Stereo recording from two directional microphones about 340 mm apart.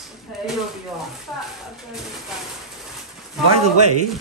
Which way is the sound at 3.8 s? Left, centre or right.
Right.